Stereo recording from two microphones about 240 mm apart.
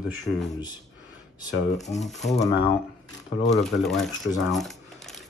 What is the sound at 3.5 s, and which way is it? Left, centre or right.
Speech, centre.